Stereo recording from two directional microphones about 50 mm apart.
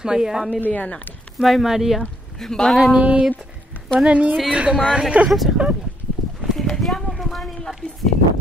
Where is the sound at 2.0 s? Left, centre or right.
Centre.